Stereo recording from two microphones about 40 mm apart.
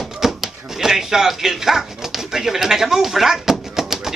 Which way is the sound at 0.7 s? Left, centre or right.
Centre.